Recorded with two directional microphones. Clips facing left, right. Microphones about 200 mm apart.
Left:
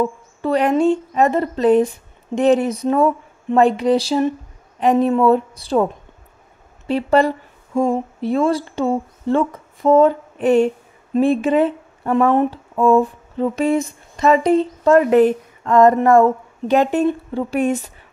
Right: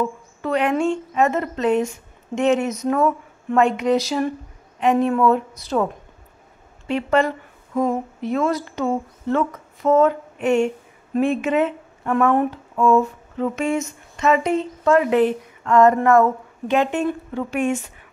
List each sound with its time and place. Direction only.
0.4 s speech: 35° left (ahead or behind)
6.9 s speech: 35° left (ahead or behind)